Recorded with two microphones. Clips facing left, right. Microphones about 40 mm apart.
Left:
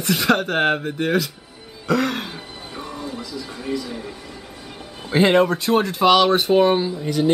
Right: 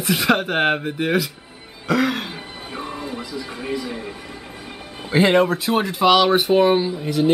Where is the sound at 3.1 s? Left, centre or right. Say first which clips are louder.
Right 1 dB; right.